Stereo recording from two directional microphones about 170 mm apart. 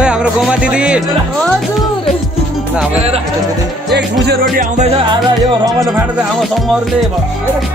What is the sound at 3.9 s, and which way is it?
Music, 85° right.